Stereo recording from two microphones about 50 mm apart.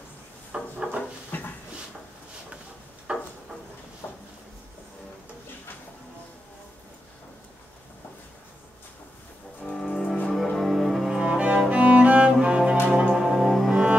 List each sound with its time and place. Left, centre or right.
0.5 s wood: right
1.3 s a sound: left
3.1 s a sound: centre
4.0 s drawer open or close: left
9.7 s music: centre
10.7 s cello: centre
11.1 s cello: right
11.7 s music: right
13.1 s cello: centre